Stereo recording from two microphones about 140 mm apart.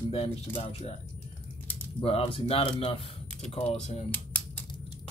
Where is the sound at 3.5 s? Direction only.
50° left (ahead or behind).